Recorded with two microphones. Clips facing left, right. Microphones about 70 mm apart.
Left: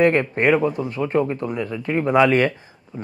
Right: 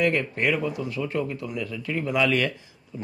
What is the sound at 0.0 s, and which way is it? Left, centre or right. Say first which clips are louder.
Speech: left 7 dB; left.